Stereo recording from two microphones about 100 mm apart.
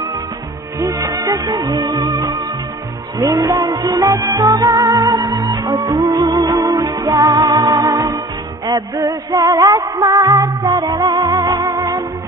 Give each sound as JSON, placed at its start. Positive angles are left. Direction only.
{"t": 0.7, "sound": "music", "side_deg": -35}